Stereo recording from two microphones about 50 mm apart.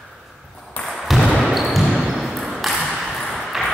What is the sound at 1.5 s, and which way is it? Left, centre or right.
Basketball bounce, centre.